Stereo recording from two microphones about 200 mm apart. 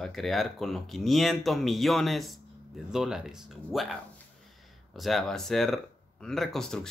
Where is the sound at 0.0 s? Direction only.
Centre (ahead or behind).